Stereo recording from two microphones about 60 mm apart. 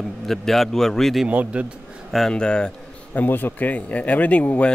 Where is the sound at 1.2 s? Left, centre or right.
Right.